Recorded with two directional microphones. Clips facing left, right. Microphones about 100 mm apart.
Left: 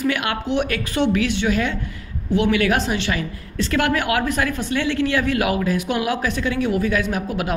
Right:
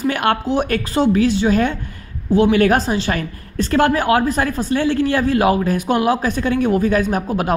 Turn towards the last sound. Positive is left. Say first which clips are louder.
# right 5 dB
turn(degrees=-40)  # may be behind; listen again after turning